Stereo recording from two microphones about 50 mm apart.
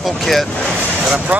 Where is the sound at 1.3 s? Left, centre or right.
Right.